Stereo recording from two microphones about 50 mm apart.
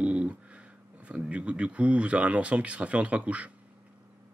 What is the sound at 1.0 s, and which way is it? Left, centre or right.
Speech, right.